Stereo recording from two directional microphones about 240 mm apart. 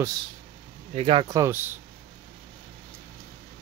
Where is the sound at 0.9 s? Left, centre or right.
Right.